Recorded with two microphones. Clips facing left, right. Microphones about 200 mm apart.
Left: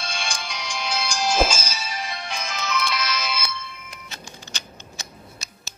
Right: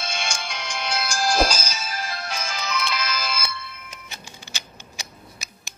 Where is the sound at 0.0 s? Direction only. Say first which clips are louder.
Right 1 dB; centre (ahead or behind).